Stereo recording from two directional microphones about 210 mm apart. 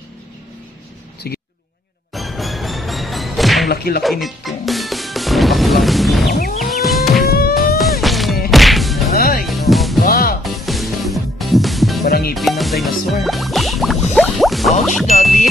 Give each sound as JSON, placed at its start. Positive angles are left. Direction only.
{"t": 1.2, "sound": "speech", "side_deg": 45}
{"t": 2.1, "sound": "music", "side_deg": 0}
{"t": 3.6, "sound": "whip", "side_deg": 50}
{"t": 4.0, "sound": "music", "side_deg": 0}
{"t": 7.2, "sound": "music", "side_deg": 45}
{"t": 7.5, "sound": "music", "side_deg": 0}
{"t": 8.0, "sound": "a sound", "side_deg": 0}
{"t": 8.5, "sound": "whack", "side_deg": 0}
{"t": 9.1, "sound": "music", "side_deg": 45}
{"t": 9.5, "sound": "music", "side_deg": 0}
{"t": 10.0, "sound": "music", "side_deg": 45}
{"t": 10.4, "sound": "music", "side_deg": 0}
{"t": 12.1, "sound": "music", "side_deg": 45}
{"t": 12.4, "sound": "music", "side_deg": 0}